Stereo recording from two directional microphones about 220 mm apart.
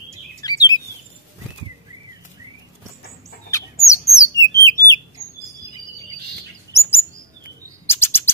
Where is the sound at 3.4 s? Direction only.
15° left (ahead or behind).